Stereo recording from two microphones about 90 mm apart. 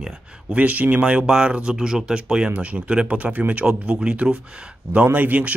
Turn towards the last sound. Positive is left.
turn(degrees=-15)  # may be behind; listen again after turning